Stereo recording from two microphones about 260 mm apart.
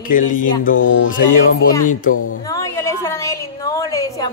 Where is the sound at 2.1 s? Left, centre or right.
Left.